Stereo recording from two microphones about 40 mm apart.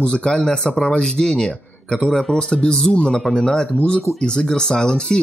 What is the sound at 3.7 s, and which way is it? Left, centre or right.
Speech, left.